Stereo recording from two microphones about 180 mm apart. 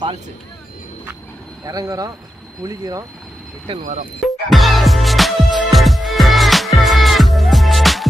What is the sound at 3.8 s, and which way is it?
Speech, 45° right (ahead or behind).